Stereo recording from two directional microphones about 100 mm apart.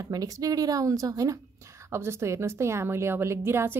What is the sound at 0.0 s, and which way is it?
A woman's voice, 35° right (ahead or behind).